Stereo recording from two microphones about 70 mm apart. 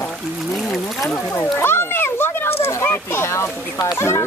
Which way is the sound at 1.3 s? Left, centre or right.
Left.